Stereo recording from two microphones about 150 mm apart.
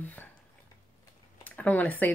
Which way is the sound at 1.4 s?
10° left (ahead or behind).